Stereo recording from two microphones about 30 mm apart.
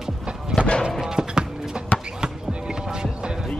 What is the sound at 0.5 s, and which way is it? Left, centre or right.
Clip-clop, left.